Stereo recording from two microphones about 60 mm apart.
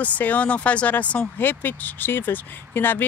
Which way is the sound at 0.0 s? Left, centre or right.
Left.